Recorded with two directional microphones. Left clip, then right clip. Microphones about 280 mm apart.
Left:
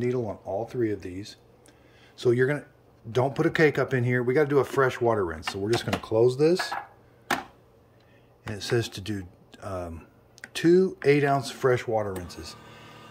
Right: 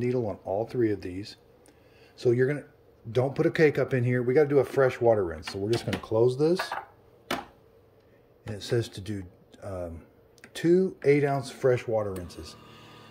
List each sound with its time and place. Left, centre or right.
0.0 s speech: centre
8.5 s speech: centre